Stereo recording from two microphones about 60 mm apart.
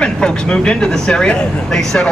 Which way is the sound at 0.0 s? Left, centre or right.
Centre.